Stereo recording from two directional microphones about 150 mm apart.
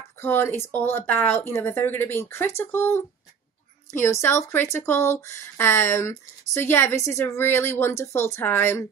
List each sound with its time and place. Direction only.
0.2 s speech: 15° left (ahead or behind)